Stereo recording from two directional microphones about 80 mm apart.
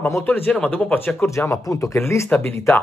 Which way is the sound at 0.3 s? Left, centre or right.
Centre.